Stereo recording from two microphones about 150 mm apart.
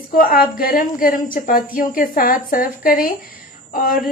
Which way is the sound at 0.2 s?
75° left (ahead or behind).